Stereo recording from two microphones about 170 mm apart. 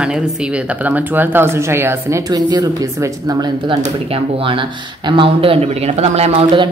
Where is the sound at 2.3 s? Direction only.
25° right (ahead or behind).